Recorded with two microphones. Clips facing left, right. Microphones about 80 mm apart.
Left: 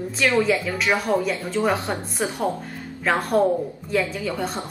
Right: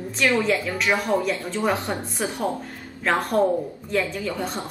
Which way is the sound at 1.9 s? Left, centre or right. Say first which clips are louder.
Left 1 dB; centre.